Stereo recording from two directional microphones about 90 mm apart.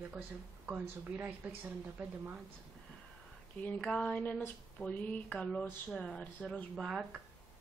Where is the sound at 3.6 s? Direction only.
10° left (ahead or behind).